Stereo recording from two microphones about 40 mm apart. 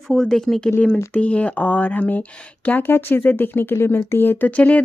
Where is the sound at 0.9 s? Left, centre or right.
Left.